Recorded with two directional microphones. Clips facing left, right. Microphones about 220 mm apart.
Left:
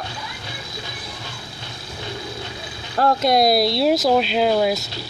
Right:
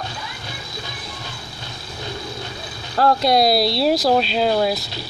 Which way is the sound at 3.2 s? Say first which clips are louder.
Left 2 dB; 50° left (ahead or behind).